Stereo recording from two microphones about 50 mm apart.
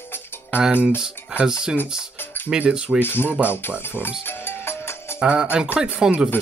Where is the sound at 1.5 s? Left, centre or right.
Centre.